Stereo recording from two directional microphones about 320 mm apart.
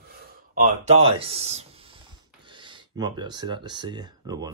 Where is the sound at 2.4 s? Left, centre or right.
Centre.